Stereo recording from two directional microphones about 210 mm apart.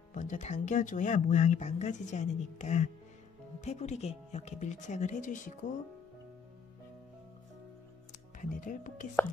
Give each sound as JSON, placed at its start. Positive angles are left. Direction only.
{"t": 0.1, "sound": "speech", "side_deg": 40}
{"t": 8.4, "sound": "speech", "side_deg": 40}